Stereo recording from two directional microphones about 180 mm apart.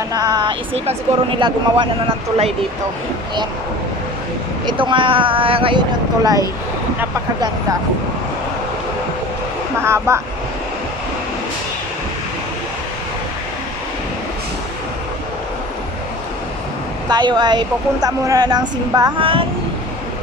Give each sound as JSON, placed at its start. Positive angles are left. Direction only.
{"t": 0.1, "sound": "a woman's voice", "side_deg": -25}
{"t": 4.6, "sound": "a woman's voice", "side_deg": -25}
{"t": 9.8, "sound": "speech", "side_deg": -15}
{"t": 17.1, "sound": "a woman's voice", "side_deg": -25}